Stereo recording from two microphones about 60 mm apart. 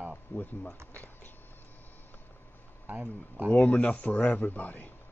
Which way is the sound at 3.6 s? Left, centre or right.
Left.